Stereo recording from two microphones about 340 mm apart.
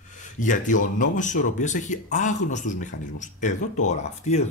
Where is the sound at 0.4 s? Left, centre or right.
Left.